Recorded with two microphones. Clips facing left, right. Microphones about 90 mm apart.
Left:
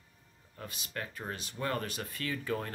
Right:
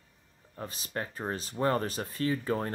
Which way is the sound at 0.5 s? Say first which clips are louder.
Right 5 dB; 35° right (ahead or behind).